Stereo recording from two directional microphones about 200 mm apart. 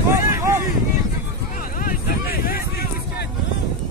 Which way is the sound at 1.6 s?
45° left (ahead or behind).